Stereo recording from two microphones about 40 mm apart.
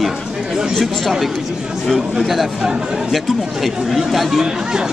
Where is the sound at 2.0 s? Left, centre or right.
Centre.